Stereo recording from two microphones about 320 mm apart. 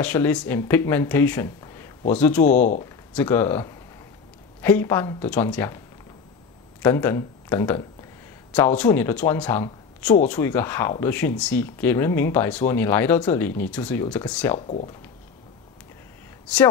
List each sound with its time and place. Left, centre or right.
0.0 s speech: centre
6.8 s speech: centre
14.7 s speech: left